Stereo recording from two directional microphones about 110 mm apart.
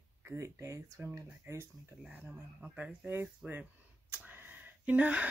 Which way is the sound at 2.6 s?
10° right (ahead or behind).